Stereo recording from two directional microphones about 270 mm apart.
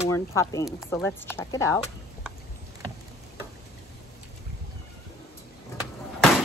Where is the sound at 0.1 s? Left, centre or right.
Centre.